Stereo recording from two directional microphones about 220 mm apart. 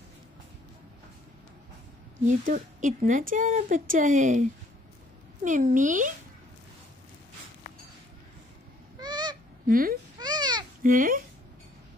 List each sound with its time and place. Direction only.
2.2 s a woman's voice: 35° right (ahead or behind)
9.0 s goose: 20° right (ahead or behind)
9.7 s a woman's voice: 40° right (ahead or behind)
10.1 s baby cry: 20° right (ahead or behind)
10.8 s a woman's voice: 40° right (ahead or behind)